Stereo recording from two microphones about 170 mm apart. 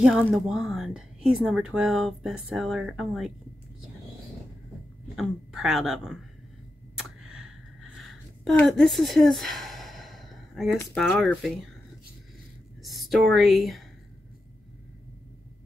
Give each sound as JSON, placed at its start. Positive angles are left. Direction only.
{"t": 0.3, "sound": "speech", "side_deg": -5}
{"t": 5.1, "sound": "speech", "side_deg": 0}
{"t": 7.0, "sound": "a sound", "side_deg": -5}
{"t": 11.0, "sound": "speech", "side_deg": 0}
{"t": 12.8, "sound": "speech", "side_deg": 0}